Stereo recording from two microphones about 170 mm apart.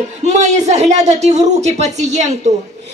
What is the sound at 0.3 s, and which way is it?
A woman's voice, 40° right (ahead or behind).